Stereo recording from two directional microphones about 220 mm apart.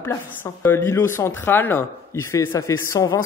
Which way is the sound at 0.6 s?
10° left (ahead or behind).